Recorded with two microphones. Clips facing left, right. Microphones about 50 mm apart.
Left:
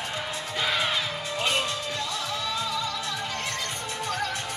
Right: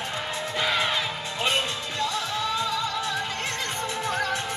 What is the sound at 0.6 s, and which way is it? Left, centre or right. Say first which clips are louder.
Music: right 1 dB; centre.